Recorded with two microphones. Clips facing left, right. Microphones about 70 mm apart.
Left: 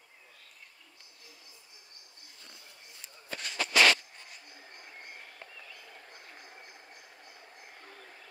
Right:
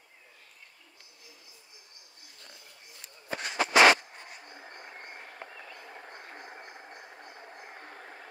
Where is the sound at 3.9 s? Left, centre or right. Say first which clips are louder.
Right 5 dB; right.